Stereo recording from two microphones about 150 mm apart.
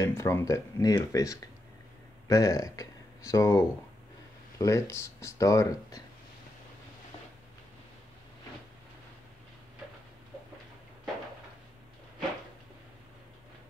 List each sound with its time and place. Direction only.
0.0 s speech: 20° left (ahead or behind)